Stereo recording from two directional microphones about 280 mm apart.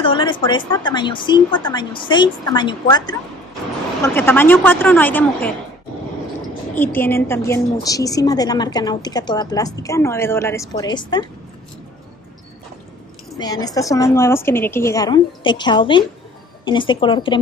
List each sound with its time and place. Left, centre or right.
0.0 s a woman's voice: centre
6.7 s a woman's voice: centre
13.4 s a woman's voice: centre